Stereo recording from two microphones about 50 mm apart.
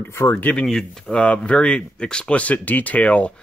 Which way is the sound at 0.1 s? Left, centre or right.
Left.